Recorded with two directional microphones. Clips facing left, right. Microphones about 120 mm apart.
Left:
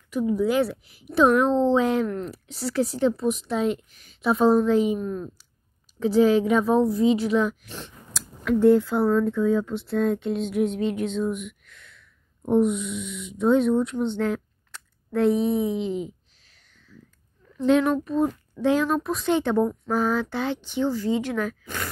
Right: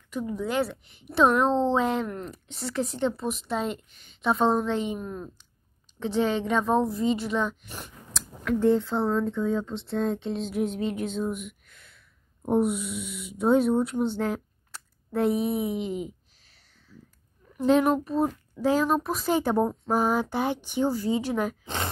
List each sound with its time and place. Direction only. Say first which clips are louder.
0.1 s a woman's voice: left 6 dB; 10° left (ahead or behind)
7.6 s speech: left 2 dB; 10° right (ahead or behind)
8.5 s a woman's voice: left 5 dB; 10° left (ahead or behind)
9.8 s a sound: left 3 dB; centre (ahead or behind)
13.9 s a woman's voice: left 2 dB; 5° right (ahead or behind)
16.5 s a sound: left 3 dB; 5° right (ahead or behind)
17.6 s a child's voice: left 1 dB; centre (ahead or behind)
19.6 s speech: left 2 dB; 30° right (ahead or behind)
19.9 s speech: even; 15° right (ahead or behind)
21.6 s speech: right 1 dB; 25° right (ahead or behind)